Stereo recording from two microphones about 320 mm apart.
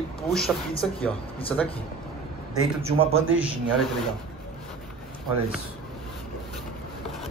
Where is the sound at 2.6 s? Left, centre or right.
Centre.